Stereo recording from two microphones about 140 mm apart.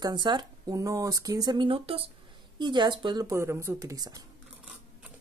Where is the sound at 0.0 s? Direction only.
30° right (ahead or behind).